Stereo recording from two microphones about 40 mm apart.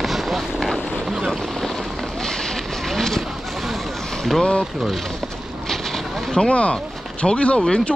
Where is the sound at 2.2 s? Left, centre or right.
Centre.